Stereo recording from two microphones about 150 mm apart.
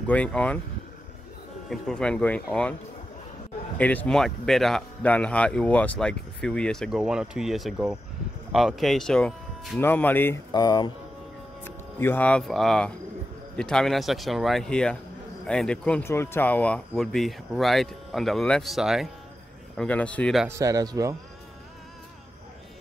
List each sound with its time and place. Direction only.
0.0 s speech: 10° left (ahead or behind)
1.7 s speech: 5° left (ahead or behind)
3.7 s speech: 10° left (ahead or behind)
10.5 s speech: 25° left (ahead or behind)
11.6 s speech: 15° left (ahead or behind)
16.0 s speech: 15° left (ahead or behind); by 19.0 s centre (ahead or behind)
19.8 s speech: 10° left (ahead or behind)
20.4 s speech: 20° right (ahead or behind)